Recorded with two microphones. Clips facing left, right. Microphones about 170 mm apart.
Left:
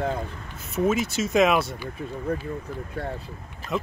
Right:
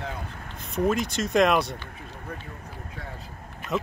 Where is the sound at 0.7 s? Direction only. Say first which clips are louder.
Left 1 dB; 5° left (ahead or behind).